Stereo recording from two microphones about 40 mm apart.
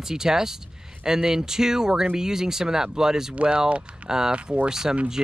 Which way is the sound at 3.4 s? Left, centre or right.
Right.